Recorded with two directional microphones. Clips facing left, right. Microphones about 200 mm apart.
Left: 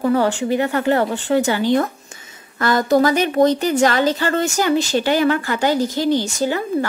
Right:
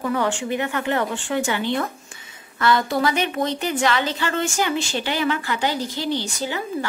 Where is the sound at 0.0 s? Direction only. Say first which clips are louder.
Left 6 dB; 35° left (ahead or behind).